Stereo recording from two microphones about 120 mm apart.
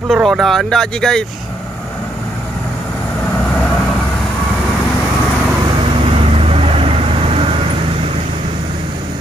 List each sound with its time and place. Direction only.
0.1 s speech: centre (ahead or behind)
6.0 s vehicle: 55° right (ahead or behind)